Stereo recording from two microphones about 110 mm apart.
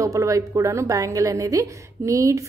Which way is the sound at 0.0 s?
30° right (ahead or behind).